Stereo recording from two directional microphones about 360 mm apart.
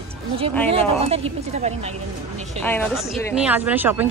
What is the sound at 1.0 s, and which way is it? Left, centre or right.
Speech, centre.